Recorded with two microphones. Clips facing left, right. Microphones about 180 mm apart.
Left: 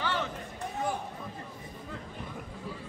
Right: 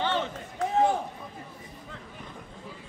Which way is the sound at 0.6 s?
90° right.